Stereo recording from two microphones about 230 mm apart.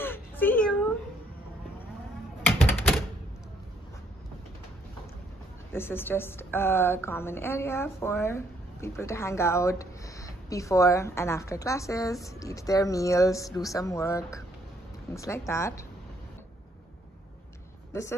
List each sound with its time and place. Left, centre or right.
0.0 s a sound: centre
2.4 s typewriter: centre
5.7 s a woman's voice: centre